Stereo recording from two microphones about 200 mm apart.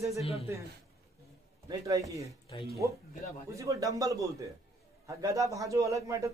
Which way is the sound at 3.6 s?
15° right (ahead or behind).